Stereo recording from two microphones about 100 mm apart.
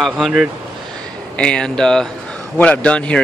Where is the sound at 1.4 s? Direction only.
10° left (ahead or behind).